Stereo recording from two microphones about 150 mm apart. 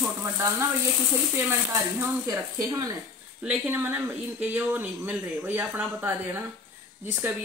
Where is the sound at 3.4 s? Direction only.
10° right (ahead or behind).